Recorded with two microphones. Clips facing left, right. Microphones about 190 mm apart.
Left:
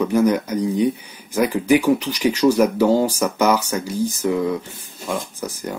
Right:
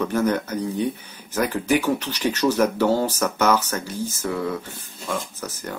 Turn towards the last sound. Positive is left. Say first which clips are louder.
# left 4 dB
turn(degrees=10)  # may be behind; listen again after turning